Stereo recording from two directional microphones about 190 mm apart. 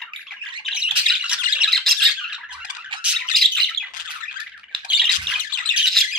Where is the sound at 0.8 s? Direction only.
5° right (ahead or behind).